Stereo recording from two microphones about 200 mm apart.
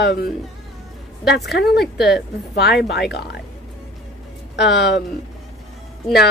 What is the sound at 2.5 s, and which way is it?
Speech, 55° left (ahead or behind).